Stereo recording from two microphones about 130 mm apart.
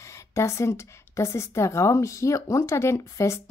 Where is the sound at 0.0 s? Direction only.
25° left (ahead or behind).